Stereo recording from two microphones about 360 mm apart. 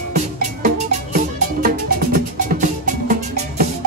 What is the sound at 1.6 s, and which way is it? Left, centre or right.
Music, right.